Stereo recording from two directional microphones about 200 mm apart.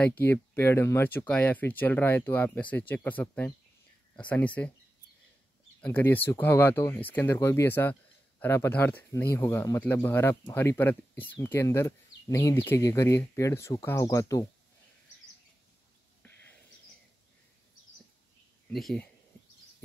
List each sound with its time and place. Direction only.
0.2 s speech: 10° left (ahead or behind)
5.8 s speech: 10° left (ahead or behind)
18.7 s speech: centre (ahead or behind)